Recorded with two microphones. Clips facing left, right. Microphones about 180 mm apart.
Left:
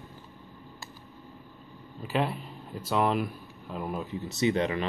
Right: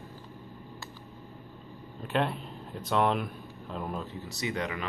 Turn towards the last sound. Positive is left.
turn(degrees=25)  # may be behind; listen again after turning